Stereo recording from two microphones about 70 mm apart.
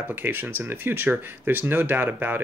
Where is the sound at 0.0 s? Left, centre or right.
Right.